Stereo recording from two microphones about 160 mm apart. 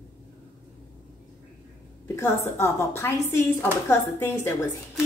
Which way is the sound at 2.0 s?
15° left (ahead or behind).